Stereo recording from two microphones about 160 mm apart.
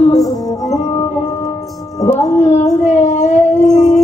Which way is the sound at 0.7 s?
45° left (ahead or behind).